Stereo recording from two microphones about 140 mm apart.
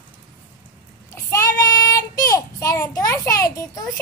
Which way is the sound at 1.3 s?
25° left (ahead or behind).